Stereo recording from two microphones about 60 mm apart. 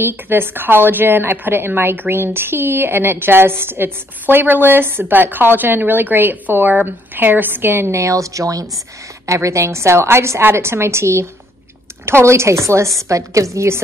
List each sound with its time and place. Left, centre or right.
0.0 s speech: right
7.9 s speech: right